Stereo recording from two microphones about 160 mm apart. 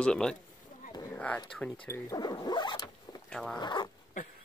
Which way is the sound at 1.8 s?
20° left (ahead or behind).